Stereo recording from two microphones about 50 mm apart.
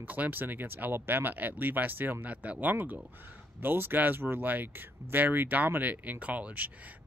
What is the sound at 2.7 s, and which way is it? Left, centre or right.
Speech, right.